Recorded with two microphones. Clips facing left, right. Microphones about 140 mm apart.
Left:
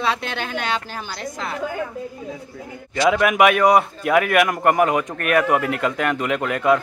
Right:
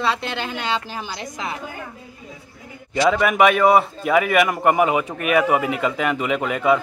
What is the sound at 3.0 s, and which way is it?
A man's voice, centre (ahead or behind).